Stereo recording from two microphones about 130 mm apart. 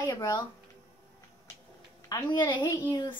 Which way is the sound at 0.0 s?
30° left (ahead or behind).